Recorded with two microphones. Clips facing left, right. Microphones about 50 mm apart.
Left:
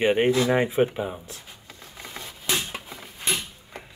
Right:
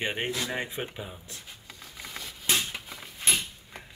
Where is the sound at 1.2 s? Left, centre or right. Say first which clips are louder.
Left 3 dB; centre.